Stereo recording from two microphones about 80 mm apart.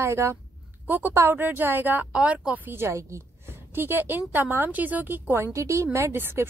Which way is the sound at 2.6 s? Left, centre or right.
Right.